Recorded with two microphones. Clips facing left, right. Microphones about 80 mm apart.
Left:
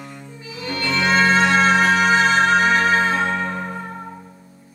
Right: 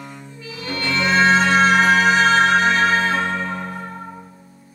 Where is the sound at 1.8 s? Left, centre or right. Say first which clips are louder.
Right 1 dB; right.